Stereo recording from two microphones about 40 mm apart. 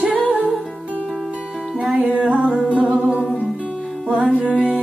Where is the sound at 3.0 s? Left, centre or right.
Right.